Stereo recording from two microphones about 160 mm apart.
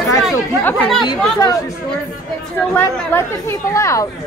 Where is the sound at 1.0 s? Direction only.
25° left (ahead or behind).